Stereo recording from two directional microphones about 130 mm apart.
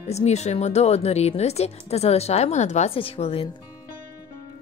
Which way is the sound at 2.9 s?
45° left (ahead or behind).